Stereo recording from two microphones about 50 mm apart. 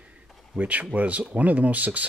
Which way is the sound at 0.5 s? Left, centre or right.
Right.